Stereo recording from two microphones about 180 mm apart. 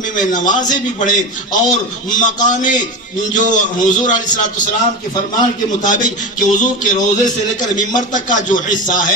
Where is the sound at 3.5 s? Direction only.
45° left (ahead or behind).